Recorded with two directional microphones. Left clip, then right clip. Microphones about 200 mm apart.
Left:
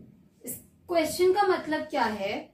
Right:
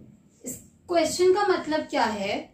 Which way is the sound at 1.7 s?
25° right (ahead or behind).